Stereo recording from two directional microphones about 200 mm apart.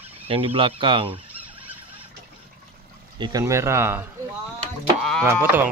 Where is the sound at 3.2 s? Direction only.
15° right (ahead or behind).